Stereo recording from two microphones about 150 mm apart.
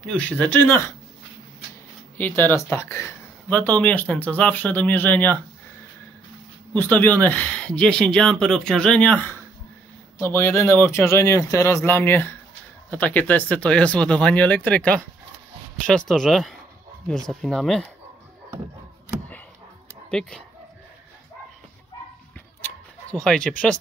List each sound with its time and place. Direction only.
0.0 s speech: 10° left (ahead or behind)
2.1 s speech: 10° left (ahead or behind)
6.7 s speech: 10° left (ahead or behind)
20.1 s speech: 5° left (ahead or behind)
23.2 s speech: 5° left (ahead or behind)